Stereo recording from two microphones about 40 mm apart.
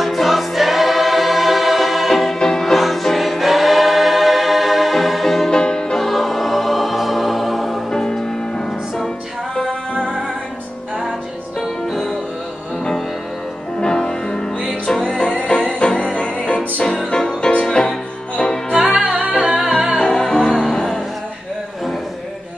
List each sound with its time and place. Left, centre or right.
0.0 s choir: centre
2.3 s music: centre
2.6 s choir: centre
5.5 s music: centre
5.9 s choir: centre
7.9 s music: centre
13.7 s music: centre
15.4 s music: left
16.8 s music: centre
18.8 s music: right
19.4 s music: centre
20.0 s music: centre